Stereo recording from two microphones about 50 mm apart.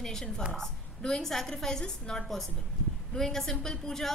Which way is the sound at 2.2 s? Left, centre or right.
Centre.